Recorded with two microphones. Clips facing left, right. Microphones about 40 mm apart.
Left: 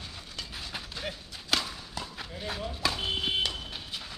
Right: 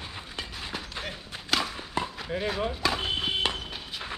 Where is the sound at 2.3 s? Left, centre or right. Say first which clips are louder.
Right 11 dB; right.